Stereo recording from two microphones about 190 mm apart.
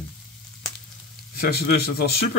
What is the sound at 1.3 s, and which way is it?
Speech, 55° left (ahead or behind).